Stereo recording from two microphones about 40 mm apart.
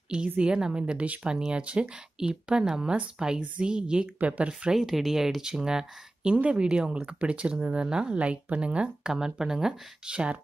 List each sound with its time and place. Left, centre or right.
0.4 s speech: right
1.3 s speech: right
3.3 s speech: right
4.6 s speech: centre
6.3 s speech: right
9.0 s speech: centre